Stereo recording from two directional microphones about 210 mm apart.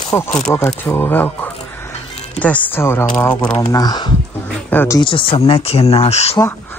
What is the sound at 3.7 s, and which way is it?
Speech, 20° left (ahead or behind).